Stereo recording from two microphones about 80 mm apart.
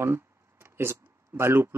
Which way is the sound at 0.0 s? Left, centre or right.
Right.